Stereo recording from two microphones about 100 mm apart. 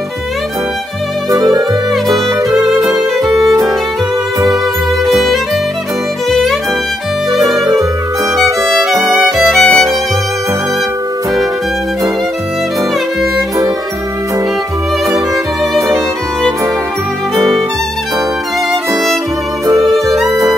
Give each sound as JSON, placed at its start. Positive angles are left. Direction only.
{"t": 1.3, "sound": "music", "side_deg": -35}
{"t": 2.9, "sound": "music", "side_deg": -35}
{"t": 7.3, "sound": "music", "side_deg": -35}
{"t": 8.9, "sound": "music", "side_deg": -30}
{"t": 9.5, "sound": "music", "side_deg": 5}
{"t": 20.2, "sound": "music", "side_deg": -35}